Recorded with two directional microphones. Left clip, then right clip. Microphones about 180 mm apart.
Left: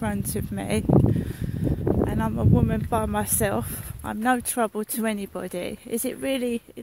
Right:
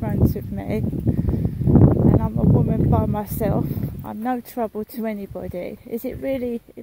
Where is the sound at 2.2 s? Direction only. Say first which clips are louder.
Right 2 dB; 55° left (ahead or behind).